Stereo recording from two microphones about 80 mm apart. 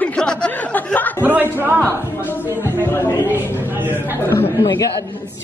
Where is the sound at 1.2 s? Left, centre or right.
Right.